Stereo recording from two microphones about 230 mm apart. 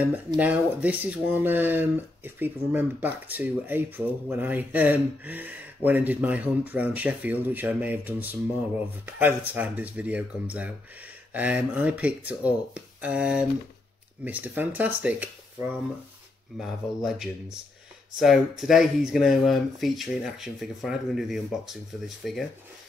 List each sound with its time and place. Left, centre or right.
0.4 s speech: centre
11.3 s speech: centre
16.5 s speech: centre